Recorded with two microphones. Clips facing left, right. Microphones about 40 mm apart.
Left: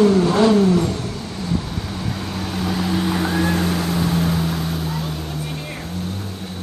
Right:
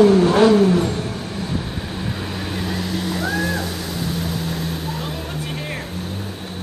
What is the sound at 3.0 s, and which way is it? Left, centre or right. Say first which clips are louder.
Vehicle: even; left.